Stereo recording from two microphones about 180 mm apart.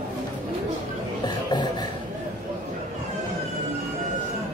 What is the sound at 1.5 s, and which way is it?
Beatboxing, 25° left (ahead or behind).